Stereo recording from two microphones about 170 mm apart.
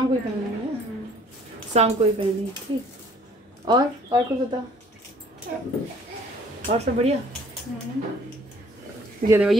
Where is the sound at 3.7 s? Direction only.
25° right (ahead or behind).